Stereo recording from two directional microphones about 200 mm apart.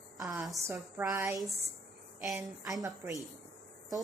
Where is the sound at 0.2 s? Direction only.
Centre (ahead or behind).